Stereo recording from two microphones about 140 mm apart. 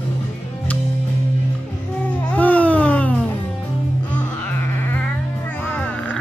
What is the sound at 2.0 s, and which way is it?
Music, 10° left (ahead or behind).